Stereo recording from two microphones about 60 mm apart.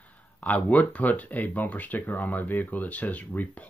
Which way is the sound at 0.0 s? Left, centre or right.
Left.